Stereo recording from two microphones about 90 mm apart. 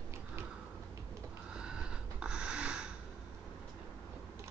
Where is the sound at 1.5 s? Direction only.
10° right (ahead or behind).